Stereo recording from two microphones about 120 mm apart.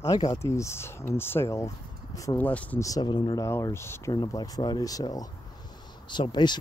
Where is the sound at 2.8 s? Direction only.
35° left (ahead or behind).